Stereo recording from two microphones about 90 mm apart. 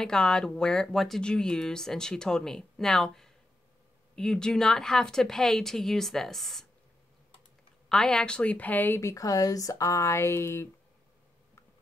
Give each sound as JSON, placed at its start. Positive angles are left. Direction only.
{"t": 0.0, "sound": "a woman's voice", "side_deg": 10}
{"t": 7.9, "sound": "speech", "side_deg": 5}
{"t": 9.0, "sound": "speech", "side_deg": 40}